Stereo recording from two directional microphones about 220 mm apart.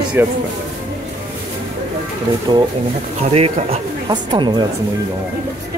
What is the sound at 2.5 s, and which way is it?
A woman's voice, 20° right (ahead or behind).